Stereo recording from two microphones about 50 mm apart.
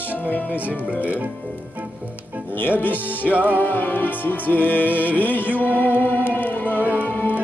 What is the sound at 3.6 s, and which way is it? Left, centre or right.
Music, left.